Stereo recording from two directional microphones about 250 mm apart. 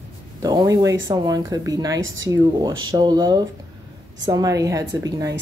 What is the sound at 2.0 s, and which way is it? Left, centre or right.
Speech, right.